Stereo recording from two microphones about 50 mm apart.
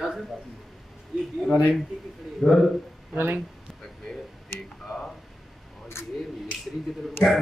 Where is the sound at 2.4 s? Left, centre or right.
Centre.